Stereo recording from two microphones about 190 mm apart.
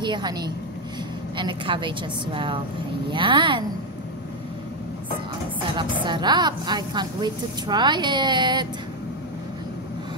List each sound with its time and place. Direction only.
0.0 s a woman's voice: 25° right (ahead or behind)
5.8 s a woman's voice: 25° right (ahead or behind)